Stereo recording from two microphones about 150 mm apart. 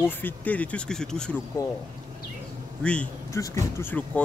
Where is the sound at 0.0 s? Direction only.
10° left (ahead or behind).